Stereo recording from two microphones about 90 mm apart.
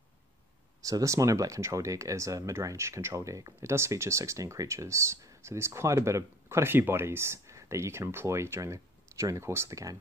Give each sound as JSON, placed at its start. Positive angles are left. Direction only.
{"t": 0.8, "sound": "speech", "side_deg": -35}